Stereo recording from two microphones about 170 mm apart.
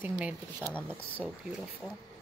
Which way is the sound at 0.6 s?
5° left (ahead or behind).